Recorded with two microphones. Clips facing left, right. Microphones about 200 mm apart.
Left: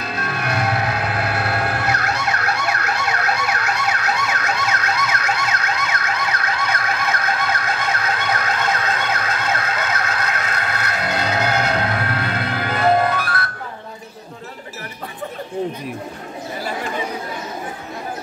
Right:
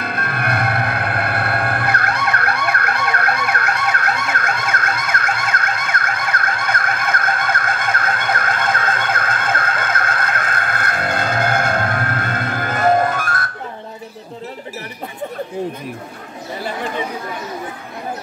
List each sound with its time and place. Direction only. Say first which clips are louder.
0.0 s music: right 2 dB; 55° right (ahead or behind)